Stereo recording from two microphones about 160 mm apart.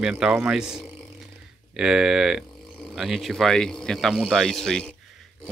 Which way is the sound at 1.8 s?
5° right (ahead or behind).